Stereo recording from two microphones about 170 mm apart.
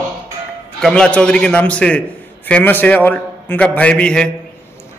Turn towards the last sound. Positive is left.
turn(degrees=5)  # may be behind; listen again after turning